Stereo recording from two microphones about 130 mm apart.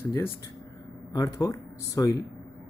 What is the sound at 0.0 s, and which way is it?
Speech, 15° left (ahead or behind).